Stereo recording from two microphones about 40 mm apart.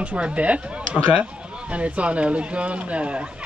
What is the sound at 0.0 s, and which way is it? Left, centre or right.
Speech, right.